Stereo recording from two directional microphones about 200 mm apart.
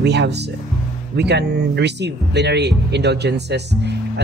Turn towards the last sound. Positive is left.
turn(degrees=-55)  # may be behind; listen again after turning